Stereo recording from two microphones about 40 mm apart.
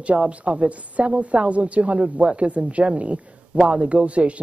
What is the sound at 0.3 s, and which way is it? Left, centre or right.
Speech, right.